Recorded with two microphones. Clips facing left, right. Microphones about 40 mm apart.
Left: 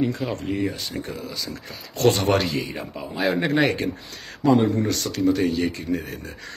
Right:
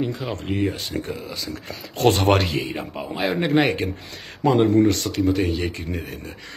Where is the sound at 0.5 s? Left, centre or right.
Right.